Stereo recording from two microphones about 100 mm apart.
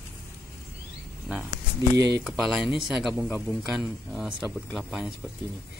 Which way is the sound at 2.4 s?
5° right (ahead or behind).